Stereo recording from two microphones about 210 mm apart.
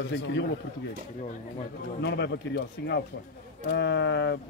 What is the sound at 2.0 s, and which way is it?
Speech, 55° left (ahead or behind).